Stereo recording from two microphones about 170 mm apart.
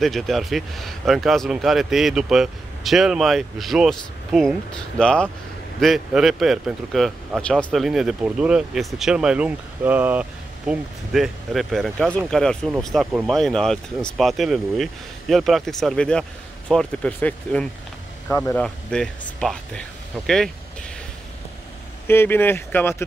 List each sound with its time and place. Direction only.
0.0 s speech: centre (ahead or behind)
22.0 s speech: 15° left (ahead or behind)